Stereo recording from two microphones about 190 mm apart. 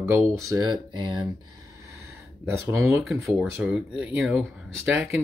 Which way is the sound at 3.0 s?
Centre (ahead or behind).